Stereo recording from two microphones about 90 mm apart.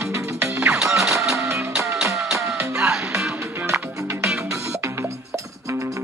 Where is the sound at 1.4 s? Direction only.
35° right (ahead or behind).